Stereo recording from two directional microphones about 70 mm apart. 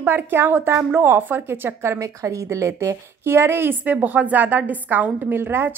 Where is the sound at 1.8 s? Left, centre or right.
Right.